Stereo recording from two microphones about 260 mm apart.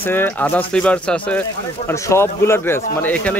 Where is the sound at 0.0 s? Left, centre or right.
Centre.